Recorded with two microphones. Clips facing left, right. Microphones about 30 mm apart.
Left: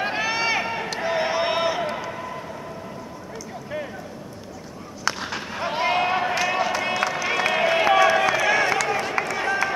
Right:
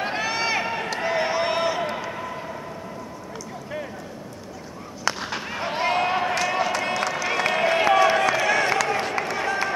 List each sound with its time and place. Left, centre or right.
0.0 s run: centre
5.0 s a sound: centre
8.6 s run: centre